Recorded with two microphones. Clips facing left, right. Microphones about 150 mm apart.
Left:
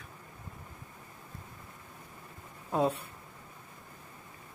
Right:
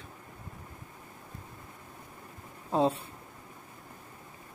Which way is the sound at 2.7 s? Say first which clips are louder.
Right 2 dB; 25° right (ahead or behind).